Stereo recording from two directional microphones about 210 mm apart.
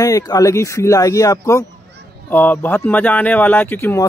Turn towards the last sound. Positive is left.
turn(degrees=10)  # may be behind; listen again after turning